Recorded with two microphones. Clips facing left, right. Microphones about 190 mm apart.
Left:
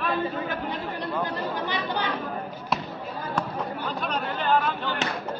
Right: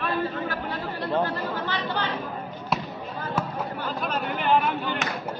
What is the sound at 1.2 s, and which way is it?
Speech, 15° left (ahead or behind).